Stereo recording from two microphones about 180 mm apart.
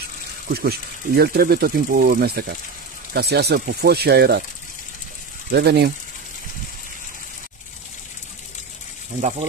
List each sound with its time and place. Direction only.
0.5 s speech: 60° right (ahead or behind)
5.5 s speech: 65° right (ahead or behind)